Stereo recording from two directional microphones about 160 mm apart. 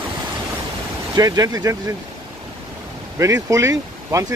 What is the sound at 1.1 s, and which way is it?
Speech, 25° right (ahead or behind).